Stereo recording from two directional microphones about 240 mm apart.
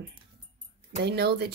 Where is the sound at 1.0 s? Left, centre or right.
Right.